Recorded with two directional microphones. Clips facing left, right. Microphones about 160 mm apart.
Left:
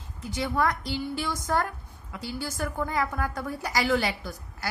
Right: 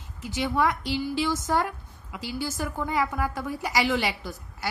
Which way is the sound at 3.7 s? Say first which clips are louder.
Even; 20° right (ahead or behind).